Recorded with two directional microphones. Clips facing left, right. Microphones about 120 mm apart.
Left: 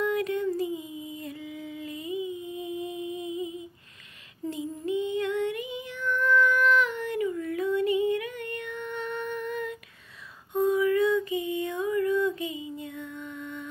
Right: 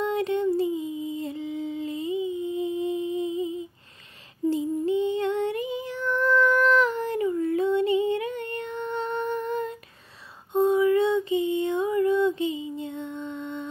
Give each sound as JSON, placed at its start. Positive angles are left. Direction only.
{"t": 0.0, "sound": "a sound", "side_deg": -30}
{"t": 4.5, "sound": "child singing", "side_deg": -30}
{"t": 10.5, "sound": "music", "side_deg": -25}